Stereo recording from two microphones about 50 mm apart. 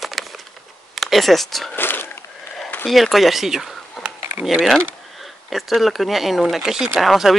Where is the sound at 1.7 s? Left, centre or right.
Left.